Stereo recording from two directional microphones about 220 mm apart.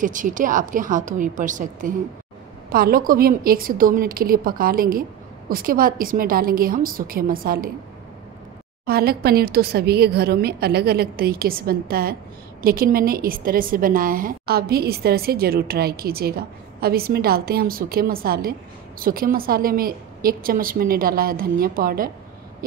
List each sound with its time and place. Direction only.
0.0 s a woman's voice: 35° right (ahead or behind)
8.8 s a woman's voice: 45° right (ahead or behind)